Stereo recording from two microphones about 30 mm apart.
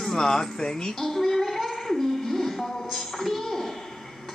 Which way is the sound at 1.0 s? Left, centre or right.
Centre.